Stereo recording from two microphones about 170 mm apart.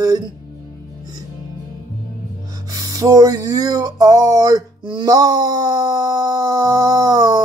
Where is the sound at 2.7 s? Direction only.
20° right (ahead or behind).